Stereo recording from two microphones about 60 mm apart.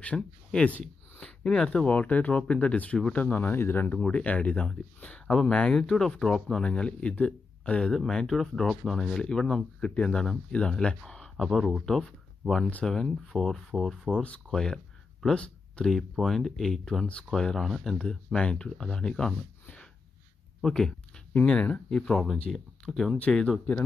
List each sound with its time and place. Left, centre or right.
0.0 s speech: centre
4.0 s speech: centre
14.1 s speech: left
14.5 s speech: centre
22.0 s speech: centre
23.1 s speech: centre